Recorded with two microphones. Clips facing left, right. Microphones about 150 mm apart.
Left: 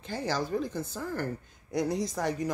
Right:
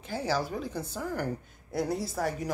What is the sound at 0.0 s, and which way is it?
Speech, 10° right (ahead or behind).